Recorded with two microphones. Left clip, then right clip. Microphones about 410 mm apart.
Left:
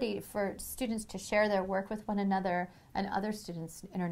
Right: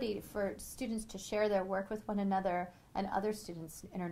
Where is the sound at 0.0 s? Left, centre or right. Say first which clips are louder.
Left 3 dB; left.